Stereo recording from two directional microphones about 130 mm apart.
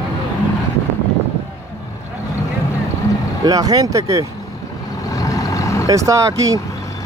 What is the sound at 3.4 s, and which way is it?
Speech, 30° right (ahead or behind).